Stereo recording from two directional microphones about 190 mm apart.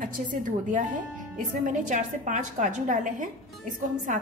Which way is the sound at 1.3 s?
40° right (ahead or behind).